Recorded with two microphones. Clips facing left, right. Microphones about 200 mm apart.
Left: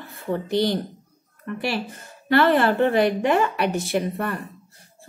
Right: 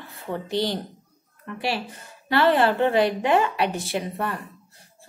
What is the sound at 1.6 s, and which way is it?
A woman's voice, 50° left (ahead or behind).